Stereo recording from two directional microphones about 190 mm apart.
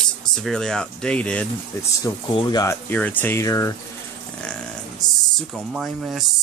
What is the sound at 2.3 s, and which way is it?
Speech, 20° left (ahead or behind).